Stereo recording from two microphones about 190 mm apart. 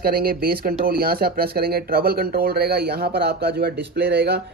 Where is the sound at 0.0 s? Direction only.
50° right (ahead or behind).